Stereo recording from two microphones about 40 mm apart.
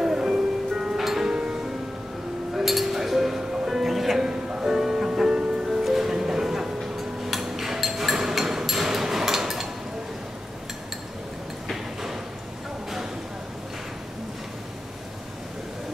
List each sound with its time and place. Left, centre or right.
0.0 s music: centre
1.3 s music: centre
2.5 s music: centre
4.2 s music: centre
7.2 s a sound: centre
11.7 s a sound: centre